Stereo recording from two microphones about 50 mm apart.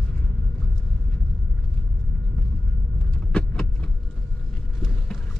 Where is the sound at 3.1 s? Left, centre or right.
Centre.